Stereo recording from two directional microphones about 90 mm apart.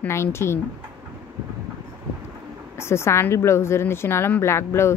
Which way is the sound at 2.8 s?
30° left (ahead or behind).